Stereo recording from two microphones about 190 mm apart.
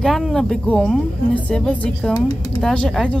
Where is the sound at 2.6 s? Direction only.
5° left (ahead or behind).